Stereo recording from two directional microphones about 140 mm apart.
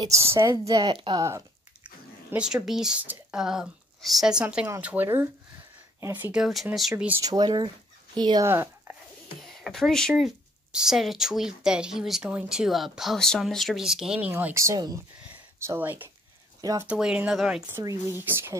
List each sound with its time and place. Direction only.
0.0 s a woman's voice: 20° right (ahead or behind)
2.3 s speech: 5° right (ahead or behind)
6.3 s speech: centre (ahead or behind)
7.2 s speech: 30° right (ahead or behind)
8.5 s a sound: 15° right (ahead or behind)
9.4 s speech: centre (ahead or behind)
14.3 s a woman's voice: 20° right (ahead or behind); by 17.6 s 5° right (ahead or behind)
17.6 s speech: 15° right (ahead or behind)